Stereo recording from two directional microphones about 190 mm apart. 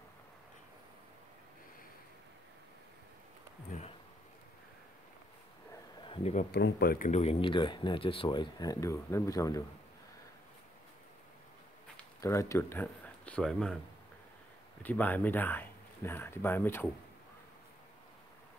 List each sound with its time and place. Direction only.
6.0 s a sound: 30° left (ahead or behind)
6.3 s speech: 55° left (ahead or behind); by 9.7 s 15° left (ahead or behind)
12.2 s speech: 15° left (ahead or behind)
14.8 s speech: 10° left (ahead or behind)